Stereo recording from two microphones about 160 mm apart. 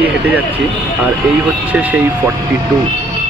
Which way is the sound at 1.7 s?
10° right (ahead or behind).